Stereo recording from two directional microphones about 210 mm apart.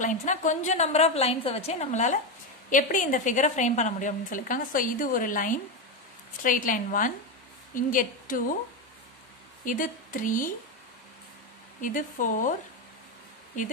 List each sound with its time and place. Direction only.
0.0 s a woman's voice: 35° left (ahead or behind)
9.7 s a woman's voice: 40° left (ahead or behind)
11.8 s a woman's voice: 40° left (ahead or behind)
13.5 s a woman's voice: 35° left (ahead or behind)